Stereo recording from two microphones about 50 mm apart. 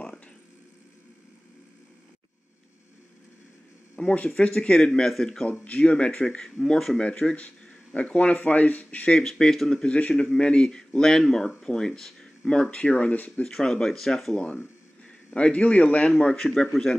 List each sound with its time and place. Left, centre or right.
4.0 s speech: centre
5.5 s speech: left
9.2 s speech: centre; by 13.3 s left
13.4 s a man's voice: centre; by 16.1 s left
16.1 s speech: centre